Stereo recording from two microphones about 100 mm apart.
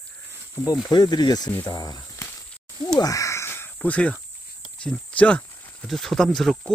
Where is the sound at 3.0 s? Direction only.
35° left (ahead or behind).